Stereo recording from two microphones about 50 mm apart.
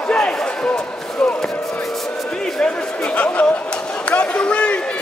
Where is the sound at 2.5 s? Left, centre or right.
Left.